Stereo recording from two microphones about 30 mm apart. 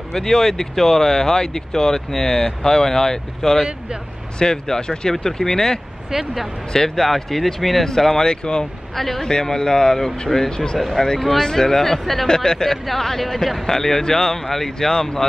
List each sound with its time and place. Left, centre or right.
0.1 s speech: centre
6.1 s speech: centre
7.0 s speech: centre
8.3 s speech: left
8.9 s speech: centre
9.2 s speech: left
12.0 s speech: centre
12.4 s speech: left
13.4 s speech: centre
13.7 s speech: centre